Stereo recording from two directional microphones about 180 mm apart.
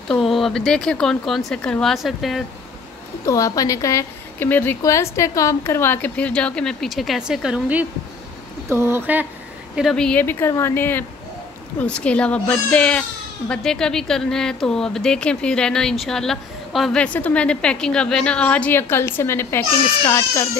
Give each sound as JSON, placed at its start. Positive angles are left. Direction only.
{"t": 0.1, "sound": "speech", "side_deg": 0}
{"t": 3.3, "sound": "a woman's voice", "side_deg": 20}
{"t": 9.8, "sound": "a woman's voice", "side_deg": 0}